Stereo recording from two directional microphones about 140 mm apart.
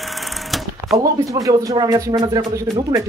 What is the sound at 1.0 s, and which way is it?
Speech, 25° right (ahead or behind).